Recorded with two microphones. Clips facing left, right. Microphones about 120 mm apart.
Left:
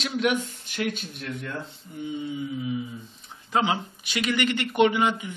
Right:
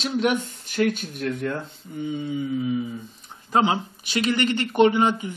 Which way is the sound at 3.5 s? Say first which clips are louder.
Right 4 dB; 35° right (ahead or behind).